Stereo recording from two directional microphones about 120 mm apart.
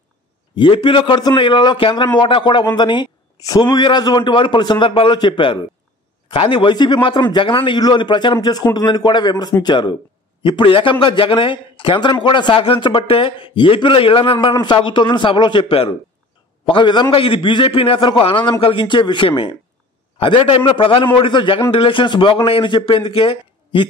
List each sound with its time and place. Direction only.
0.6 s a man's voice: 45° left (ahead or behind)
14.5 s a man's voice: 35° left (ahead or behind)